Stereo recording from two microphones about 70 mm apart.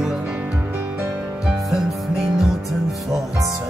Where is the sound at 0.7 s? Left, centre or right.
Right.